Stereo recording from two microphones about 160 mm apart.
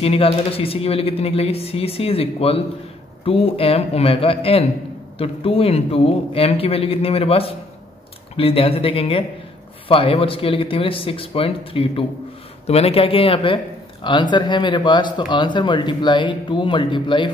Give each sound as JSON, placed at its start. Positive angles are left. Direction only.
{"t": 0.0, "sound": "speech", "side_deg": 35}